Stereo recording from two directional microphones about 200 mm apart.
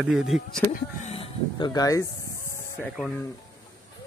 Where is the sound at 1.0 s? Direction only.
30° left (ahead or behind).